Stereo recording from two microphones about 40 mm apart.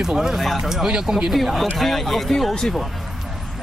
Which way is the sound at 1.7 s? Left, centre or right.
Centre.